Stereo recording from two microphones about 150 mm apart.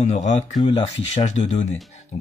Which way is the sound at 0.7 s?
40° left (ahead or behind).